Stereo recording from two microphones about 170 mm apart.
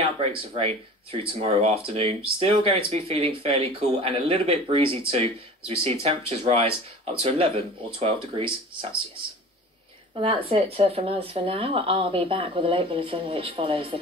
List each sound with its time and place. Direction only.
0.6 s speech: 35° right (ahead or behind)
10.2 s speech: 35° right (ahead or behind)